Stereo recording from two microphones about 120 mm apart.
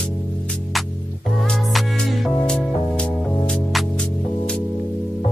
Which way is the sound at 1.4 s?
5° left (ahead or behind).